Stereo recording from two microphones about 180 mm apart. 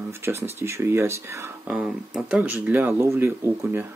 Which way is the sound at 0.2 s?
15° right (ahead or behind).